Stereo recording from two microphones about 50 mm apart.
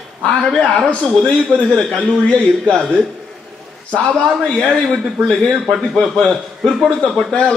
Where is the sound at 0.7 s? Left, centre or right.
Left.